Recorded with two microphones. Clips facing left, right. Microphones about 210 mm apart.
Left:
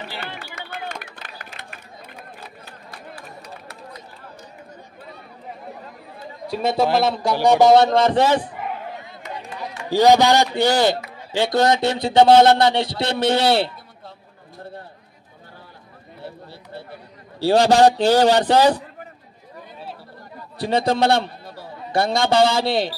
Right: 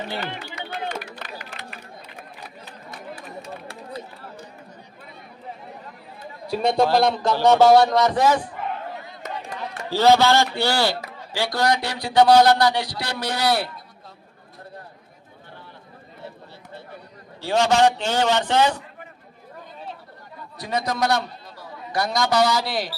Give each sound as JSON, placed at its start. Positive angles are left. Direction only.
{"t": 0.4, "sound": "music", "side_deg": 50}
{"t": 2.9, "sound": "chatter", "side_deg": -25}
{"t": 6.5, "sound": "a man's voice", "side_deg": 5}
{"t": 9.6, "sound": "a man's voice", "side_deg": 15}
{"t": 17.4, "sound": "a man's voice", "side_deg": 35}
{"t": 20.5, "sound": "a man's voice", "side_deg": 30}